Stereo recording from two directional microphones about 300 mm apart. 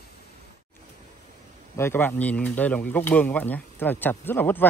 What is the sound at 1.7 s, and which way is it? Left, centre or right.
Speech, centre.